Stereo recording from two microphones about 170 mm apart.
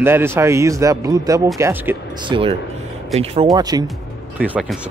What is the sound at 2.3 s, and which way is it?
Speech, 30° right (ahead or behind).